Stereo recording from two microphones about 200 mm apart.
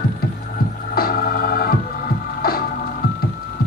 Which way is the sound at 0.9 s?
50° left (ahead or behind).